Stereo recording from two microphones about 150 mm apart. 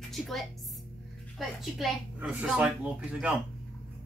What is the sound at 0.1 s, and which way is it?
A woman's voice, centre (ahead or behind).